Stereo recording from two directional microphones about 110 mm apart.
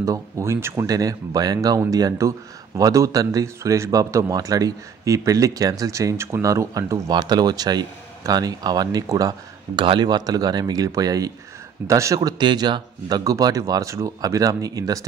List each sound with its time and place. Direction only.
0.0 s speech: 25° right (ahead or behind)